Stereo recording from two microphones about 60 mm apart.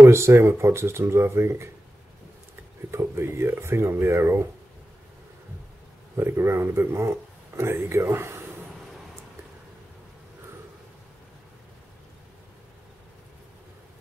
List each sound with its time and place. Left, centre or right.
0.0 s speech: right
2.9 s speech: right
6.1 s speech: right